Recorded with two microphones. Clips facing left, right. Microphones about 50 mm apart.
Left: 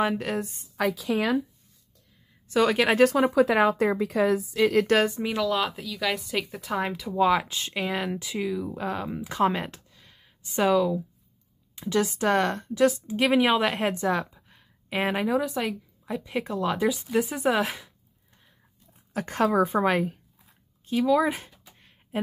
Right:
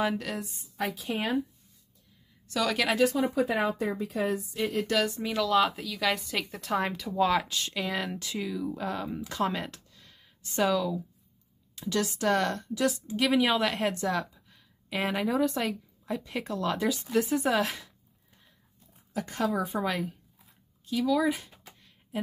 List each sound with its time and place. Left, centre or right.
0.0 s a woman's voice: left
0.7 s a woman's voice: left
2.4 s speech: left
3.0 s speech: left
3.4 s speech: left
4.9 s a woman's voice: left
5.2 s speech: centre
7.4 s speech: left
15.2 s a woman's voice: centre
16.3 s speech: centre
19.1 s a woman's voice: left
21.7 s computer keyboard: left